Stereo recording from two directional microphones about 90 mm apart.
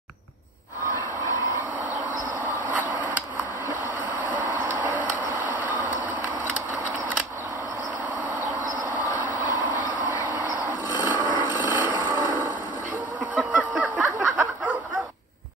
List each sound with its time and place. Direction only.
2.4 s vehicle: 20° right (ahead or behind)
4.5 s vehicle: 30° right (ahead or behind)
8.9 s train: 20° right (ahead or behind)
13.3 s a sound: 15° right (ahead or behind)